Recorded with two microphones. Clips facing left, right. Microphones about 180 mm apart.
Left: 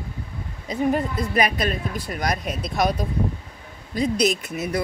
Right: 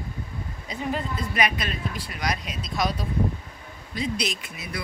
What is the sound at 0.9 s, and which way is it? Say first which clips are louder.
Speech: left 6 dB; 40° left (ahead or behind).